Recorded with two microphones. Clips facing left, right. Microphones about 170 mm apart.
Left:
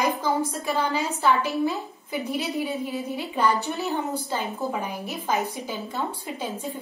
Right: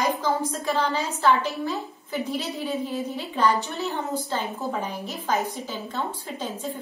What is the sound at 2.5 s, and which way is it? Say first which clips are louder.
A woman's voice: even; 15° left (ahead or behind).